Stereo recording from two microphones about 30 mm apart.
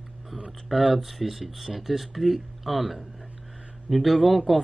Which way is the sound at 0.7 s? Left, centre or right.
Centre.